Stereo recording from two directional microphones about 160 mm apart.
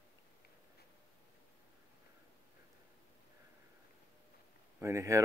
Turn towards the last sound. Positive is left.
turn(degrees=-20)  # may be behind; listen again after turning